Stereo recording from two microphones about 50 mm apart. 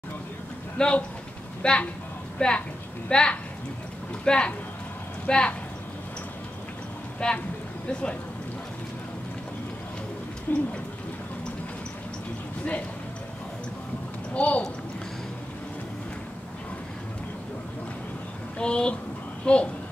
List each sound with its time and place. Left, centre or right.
0.7 s a woman's voice: left
7.2 s speech: centre
10.5 s a sound: left
14.3 s a woman's voice: left
18.6 s a child's voice: left